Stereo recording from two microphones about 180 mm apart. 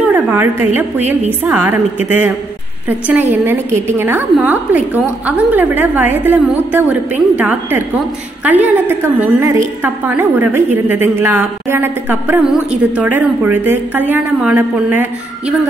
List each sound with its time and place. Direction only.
0.1 s a woman's voice: 10° right (ahead or behind)